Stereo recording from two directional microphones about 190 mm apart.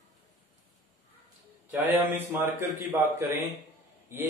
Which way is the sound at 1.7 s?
10° right (ahead or behind).